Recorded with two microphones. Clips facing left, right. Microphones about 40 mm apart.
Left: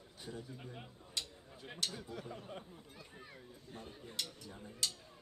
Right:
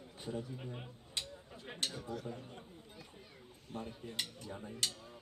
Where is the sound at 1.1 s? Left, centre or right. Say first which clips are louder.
Right 1 dB; right.